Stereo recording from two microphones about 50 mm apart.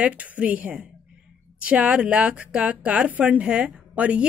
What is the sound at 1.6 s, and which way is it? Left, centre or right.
Speech, right.